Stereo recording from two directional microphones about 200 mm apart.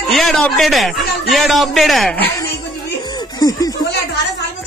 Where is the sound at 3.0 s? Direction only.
20° left (ahead or behind).